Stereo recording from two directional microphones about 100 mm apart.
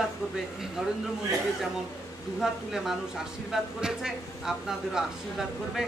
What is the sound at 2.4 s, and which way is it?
A man's voice, 5° right (ahead or behind).